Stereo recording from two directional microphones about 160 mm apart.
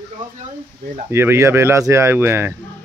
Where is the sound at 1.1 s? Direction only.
15° right (ahead or behind).